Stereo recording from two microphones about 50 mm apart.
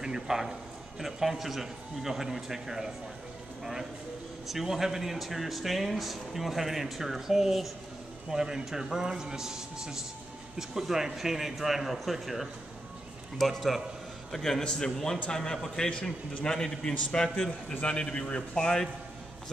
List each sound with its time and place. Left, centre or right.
0.0 s a man's voice: centre
4.5 s a man's voice: centre
15.9 s a man's voice: left
16.4 s a man's voice: centre